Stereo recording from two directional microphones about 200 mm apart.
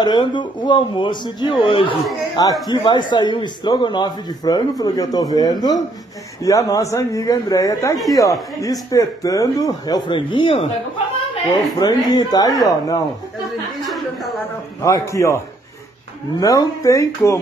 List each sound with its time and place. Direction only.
0.0 s a man's voice: 20° left (ahead or behind)
11.8 s a man's voice: 20° left (ahead or behind)
13.9 s a sound: centre (ahead or behind)
14.8 s speech: 15° left (ahead or behind)